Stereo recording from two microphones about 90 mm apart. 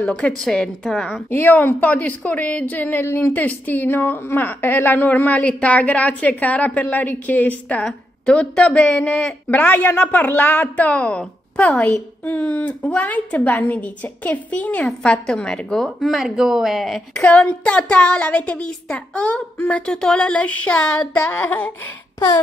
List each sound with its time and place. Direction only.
0.0 s a woman's voice: 10° left (ahead or behind)
1.3 s a woman's voice: 25° left (ahead or behind); by 9.3 s 5° left (ahead or behind)
9.5 s a woman's voice: 20° left (ahead or behind); by 17.0 s centre (ahead or behind)
17.1 s a woman's voice: 10° left (ahead or behind)